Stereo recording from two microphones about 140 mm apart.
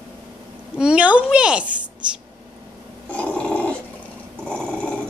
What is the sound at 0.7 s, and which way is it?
Speech, 10° right (ahead or behind).